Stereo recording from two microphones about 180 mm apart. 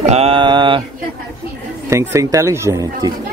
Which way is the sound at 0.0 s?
35° right (ahead or behind).